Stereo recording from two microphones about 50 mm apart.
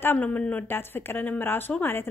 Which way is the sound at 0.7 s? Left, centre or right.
Left.